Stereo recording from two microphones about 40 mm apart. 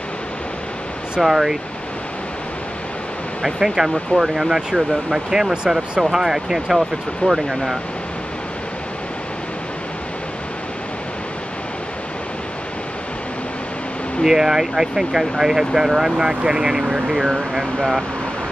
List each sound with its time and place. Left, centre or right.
1.2 s speech: centre
3.4 s speech: centre
14.2 s speech: centre